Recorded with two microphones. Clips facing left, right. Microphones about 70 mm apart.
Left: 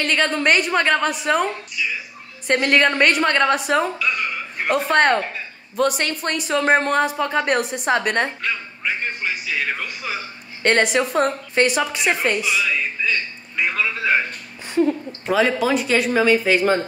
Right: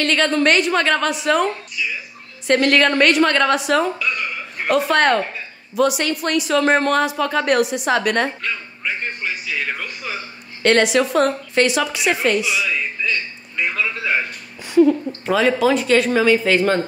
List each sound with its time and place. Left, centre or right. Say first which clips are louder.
0.0 s a woman's voice: right 3 dB; centre
0.7 s a woman's voice: even; centre
2.4 s a woman's voice: right 2 dB; centre
4.0 s a sound: left 1 dB; centre
4.6 s a woman's voice: right 1 dB; left
5.8 s a woman's voice: right 2 dB; left
6.6 s a woman's voice: left 1 dB; left
8.4 s music: left 1 dB; centre
10.6 s a woman's voice: right 2 dB; left
13.0 s a sound: even; centre
13.6 s a man's voice: even; centre
15.2 s speech: right 2 dB; centre